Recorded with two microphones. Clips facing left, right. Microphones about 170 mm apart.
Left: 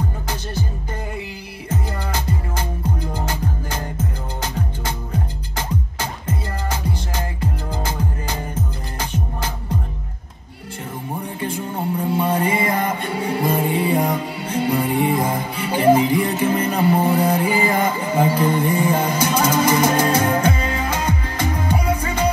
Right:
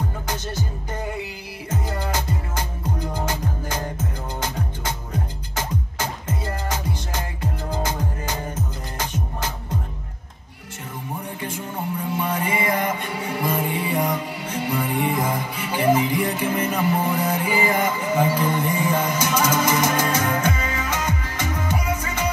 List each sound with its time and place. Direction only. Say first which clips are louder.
11.7 s music: left 5 dB; 30° left (ahead or behind)